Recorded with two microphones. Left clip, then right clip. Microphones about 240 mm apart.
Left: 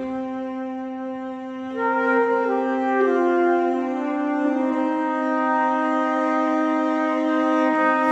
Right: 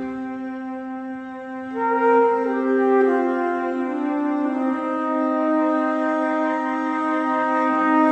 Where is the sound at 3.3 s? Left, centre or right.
Left.